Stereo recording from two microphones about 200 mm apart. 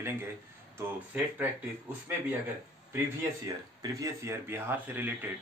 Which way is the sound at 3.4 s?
15° right (ahead or behind).